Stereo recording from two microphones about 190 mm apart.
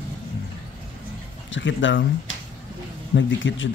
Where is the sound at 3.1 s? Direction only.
80° left.